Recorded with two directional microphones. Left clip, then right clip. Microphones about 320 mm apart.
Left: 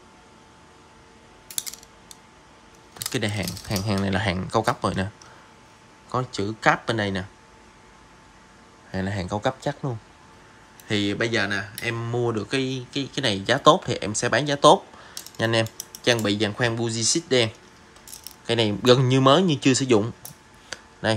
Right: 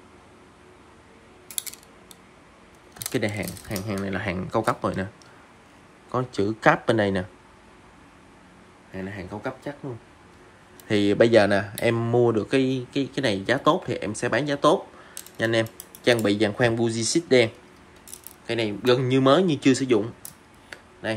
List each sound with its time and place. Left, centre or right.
3.1 s speech: centre
6.1 s speech: centre
8.9 s speech: centre
10.9 s speech: centre
18.5 s speech: centre
20.7 s a sound: centre